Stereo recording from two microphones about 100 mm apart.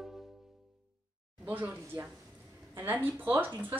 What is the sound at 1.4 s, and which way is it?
A woman's voice, 20° right (ahead or behind).